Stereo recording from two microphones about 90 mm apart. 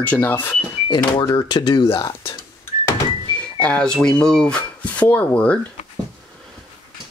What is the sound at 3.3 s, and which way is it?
Speech, 10° left (ahead or behind).